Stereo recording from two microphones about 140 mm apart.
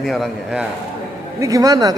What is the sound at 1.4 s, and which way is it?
Speech, 25° right (ahead or behind).